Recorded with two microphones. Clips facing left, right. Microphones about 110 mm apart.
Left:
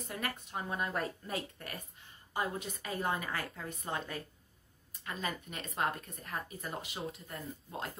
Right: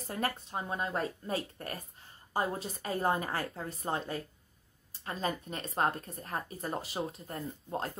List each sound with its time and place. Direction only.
0.0 s speech: 30° right (ahead or behind)